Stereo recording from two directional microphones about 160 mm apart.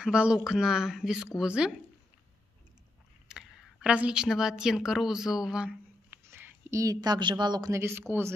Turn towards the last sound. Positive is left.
turn(degrees=-15)  # may be behind; listen again after turning